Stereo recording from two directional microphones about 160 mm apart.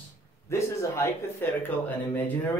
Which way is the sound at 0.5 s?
15° left (ahead or behind).